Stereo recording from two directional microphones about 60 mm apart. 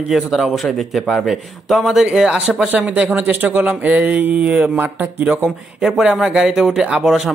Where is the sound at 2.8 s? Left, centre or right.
Right.